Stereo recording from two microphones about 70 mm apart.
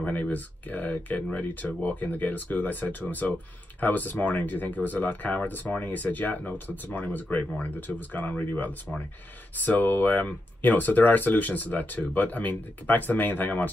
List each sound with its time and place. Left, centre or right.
0.0 s speech: left